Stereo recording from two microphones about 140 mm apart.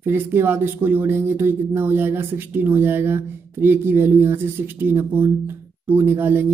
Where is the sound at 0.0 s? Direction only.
15° right (ahead or behind).